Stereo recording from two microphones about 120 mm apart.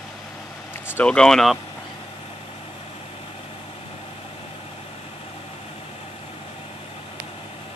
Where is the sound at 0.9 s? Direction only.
10° left (ahead or behind).